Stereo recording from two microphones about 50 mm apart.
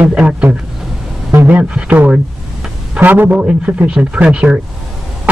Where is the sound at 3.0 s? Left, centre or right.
Right.